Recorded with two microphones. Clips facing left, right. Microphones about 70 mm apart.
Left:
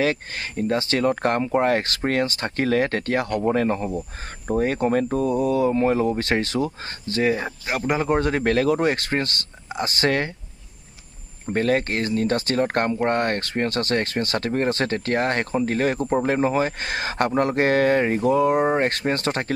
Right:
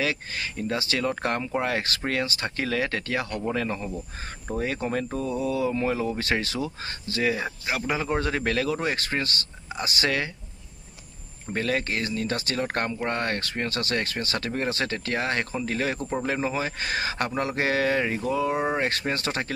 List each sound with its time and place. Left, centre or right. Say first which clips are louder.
0.0 s speech: left 5 dB; left
11.5 s speech: left 5 dB; left
18.5 s speech: left 6 dB; left
18.8 s speech: left 5 dB; left